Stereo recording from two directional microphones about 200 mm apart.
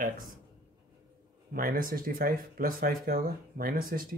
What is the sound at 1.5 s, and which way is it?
Speech, 45° right (ahead or behind).